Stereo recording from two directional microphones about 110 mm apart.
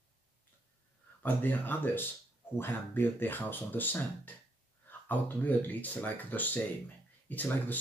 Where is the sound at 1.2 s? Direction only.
15° left (ahead or behind).